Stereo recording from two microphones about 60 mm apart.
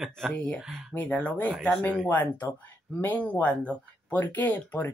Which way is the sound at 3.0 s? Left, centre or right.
Left.